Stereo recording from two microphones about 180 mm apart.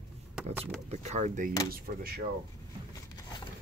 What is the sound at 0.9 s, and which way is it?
Speech, 40° right (ahead or behind).